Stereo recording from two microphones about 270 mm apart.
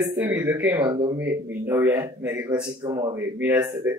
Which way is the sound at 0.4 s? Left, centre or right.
Centre.